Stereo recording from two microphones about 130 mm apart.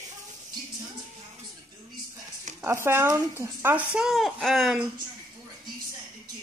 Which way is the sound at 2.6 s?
20° right (ahead or behind).